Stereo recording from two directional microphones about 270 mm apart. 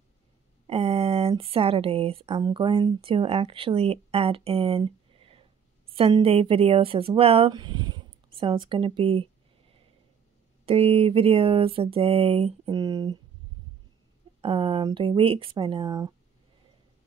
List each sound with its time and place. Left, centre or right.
0.7 s speech: right
10.6 s speech: right
14.4 s speech: right